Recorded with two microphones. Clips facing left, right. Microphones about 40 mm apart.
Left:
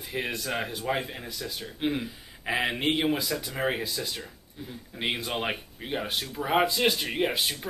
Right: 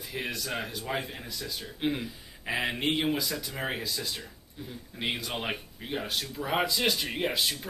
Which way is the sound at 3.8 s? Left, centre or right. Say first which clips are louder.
Left 2 dB; left.